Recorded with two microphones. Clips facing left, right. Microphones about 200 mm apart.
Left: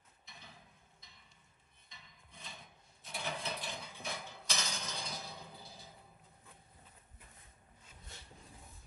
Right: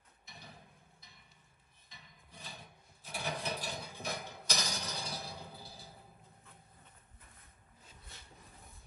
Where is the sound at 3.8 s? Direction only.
15° right (ahead or behind).